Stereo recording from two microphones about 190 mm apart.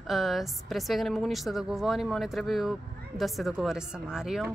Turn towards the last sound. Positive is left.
turn(degrees=-5)  # may be behind; listen again after turning